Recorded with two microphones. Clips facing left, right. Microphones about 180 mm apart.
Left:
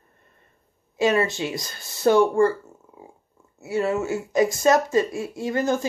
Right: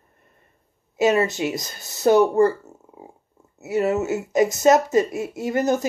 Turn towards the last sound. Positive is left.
turn(degrees=-20)  # may be behind; listen again after turning